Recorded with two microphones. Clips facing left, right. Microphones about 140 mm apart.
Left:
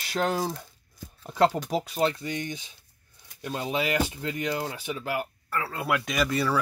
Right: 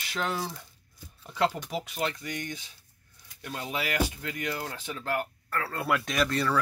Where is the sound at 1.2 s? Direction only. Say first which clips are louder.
Left 5 dB; 45° left (ahead or behind).